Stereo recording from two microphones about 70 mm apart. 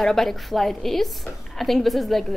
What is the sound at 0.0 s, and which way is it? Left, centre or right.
A woman's voice, centre.